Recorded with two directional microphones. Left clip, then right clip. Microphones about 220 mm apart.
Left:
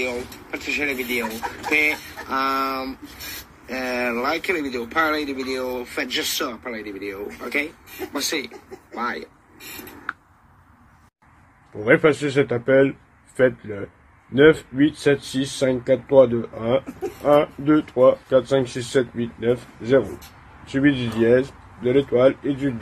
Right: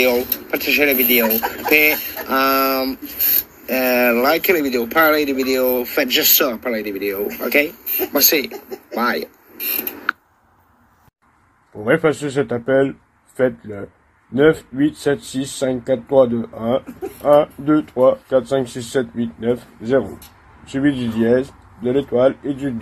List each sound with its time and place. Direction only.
0.0 s speech: 50° right (ahead or behind)
11.8 s speech: centre (ahead or behind)